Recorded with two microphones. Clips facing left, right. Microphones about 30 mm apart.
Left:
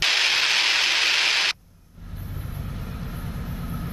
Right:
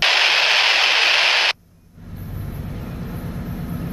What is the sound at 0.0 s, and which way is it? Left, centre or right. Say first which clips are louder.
Static: right 5 dB; right.